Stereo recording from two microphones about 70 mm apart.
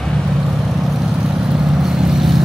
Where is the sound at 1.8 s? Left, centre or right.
Centre.